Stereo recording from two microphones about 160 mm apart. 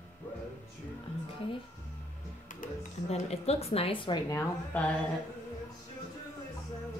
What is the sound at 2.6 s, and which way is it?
A woman's voice, 40° left (ahead or behind).